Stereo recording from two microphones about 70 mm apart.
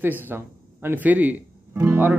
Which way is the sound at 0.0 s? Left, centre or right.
Right.